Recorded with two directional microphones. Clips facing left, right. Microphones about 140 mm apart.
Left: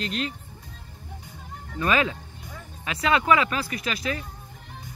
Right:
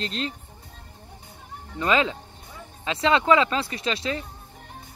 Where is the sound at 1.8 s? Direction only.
25° right (ahead or behind).